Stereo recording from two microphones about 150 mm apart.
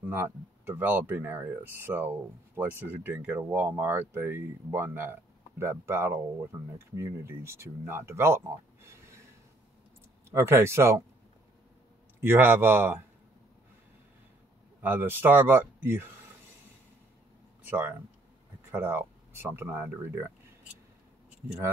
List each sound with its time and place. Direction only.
0.0 s speech: 15° right (ahead or behind)
10.3 s speech: 15° right (ahead or behind)
12.2 s speech: 15° right (ahead or behind)
14.8 s speech: 15° right (ahead or behind)
17.6 s speech: 15° right (ahead or behind)